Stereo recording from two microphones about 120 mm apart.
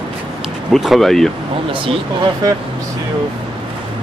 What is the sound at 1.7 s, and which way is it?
Speech, 45° right (ahead or behind).